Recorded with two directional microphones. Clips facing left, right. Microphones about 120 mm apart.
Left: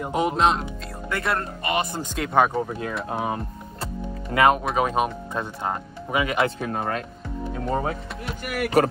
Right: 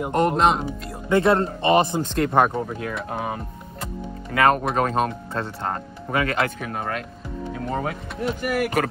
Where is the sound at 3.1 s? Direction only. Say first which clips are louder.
Left 3 dB; 20° left (ahead or behind).